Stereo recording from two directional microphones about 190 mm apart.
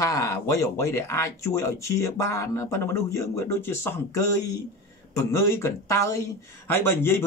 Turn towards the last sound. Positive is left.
turn(degrees=10)  # may be behind; listen again after turning